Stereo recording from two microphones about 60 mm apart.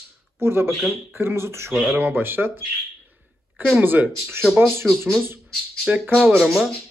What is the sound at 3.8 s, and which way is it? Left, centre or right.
Speech, right.